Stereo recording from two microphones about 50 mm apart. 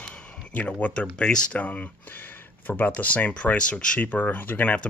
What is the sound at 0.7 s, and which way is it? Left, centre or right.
Speech, left.